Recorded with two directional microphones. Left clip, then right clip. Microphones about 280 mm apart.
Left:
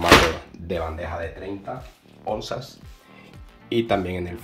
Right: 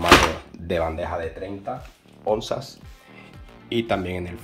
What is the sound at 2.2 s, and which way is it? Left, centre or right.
Speech, right.